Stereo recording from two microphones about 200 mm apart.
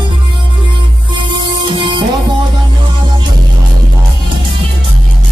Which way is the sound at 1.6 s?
25° right (ahead or behind).